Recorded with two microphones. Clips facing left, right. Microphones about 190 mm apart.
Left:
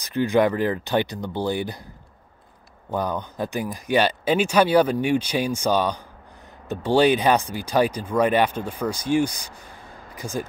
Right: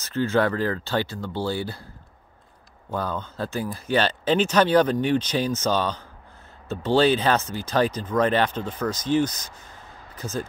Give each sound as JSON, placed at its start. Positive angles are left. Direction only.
{"t": 0.0, "sound": "speech", "side_deg": 15}
{"t": 2.9, "sound": "speech", "side_deg": 15}